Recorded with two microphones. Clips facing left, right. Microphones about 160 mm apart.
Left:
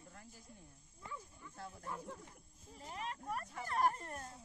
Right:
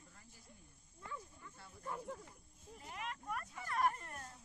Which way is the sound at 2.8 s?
35° left (ahead or behind).